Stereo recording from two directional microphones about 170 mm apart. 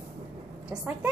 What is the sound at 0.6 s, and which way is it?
Speech, 5° right (ahead or behind).